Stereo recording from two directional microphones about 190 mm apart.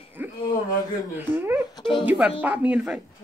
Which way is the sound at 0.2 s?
10° right (ahead or behind).